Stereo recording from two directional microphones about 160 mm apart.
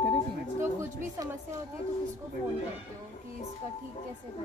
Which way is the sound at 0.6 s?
20° right (ahead or behind).